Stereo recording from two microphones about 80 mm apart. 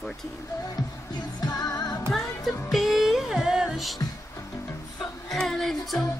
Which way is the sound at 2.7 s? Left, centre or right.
Centre.